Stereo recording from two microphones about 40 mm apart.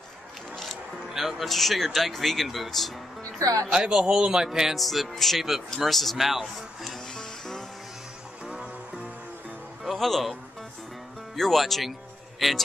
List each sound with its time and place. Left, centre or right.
1.1 s speech: centre
3.7 s speech: centre
4.7 s speech: centre
7.2 s music: centre
8.5 s music: centre
9.8 s speech: centre
11.3 s speech: centre